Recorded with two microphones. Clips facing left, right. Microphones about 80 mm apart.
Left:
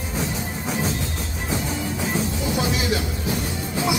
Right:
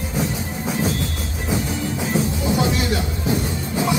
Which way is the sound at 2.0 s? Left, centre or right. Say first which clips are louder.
Right 4 dB; centre.